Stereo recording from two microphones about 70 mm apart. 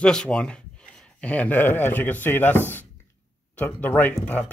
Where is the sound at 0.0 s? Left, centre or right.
Centre.